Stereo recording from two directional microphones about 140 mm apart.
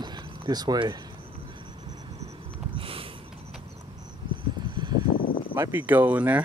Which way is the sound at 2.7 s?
40° right (ahead or behind).